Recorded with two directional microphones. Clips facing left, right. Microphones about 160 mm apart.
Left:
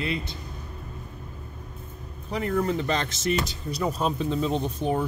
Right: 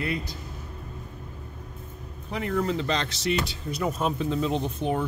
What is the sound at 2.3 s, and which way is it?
Speech, 40° left (ahead or behind).